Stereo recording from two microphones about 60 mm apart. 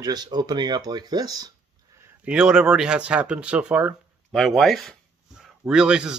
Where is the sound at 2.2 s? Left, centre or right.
Centre.